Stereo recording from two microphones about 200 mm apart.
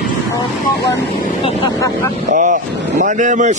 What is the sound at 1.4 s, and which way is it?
Speech, 30° left (ahead or behind).